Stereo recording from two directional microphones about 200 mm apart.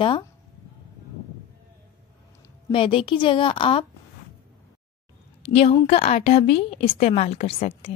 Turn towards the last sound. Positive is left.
turn(degrees=30)  # may be behind; listen again after turning